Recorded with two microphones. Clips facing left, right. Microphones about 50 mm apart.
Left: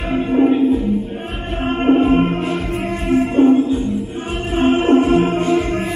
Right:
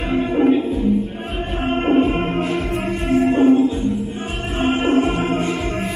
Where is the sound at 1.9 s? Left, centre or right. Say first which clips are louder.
Left 2 dB; right.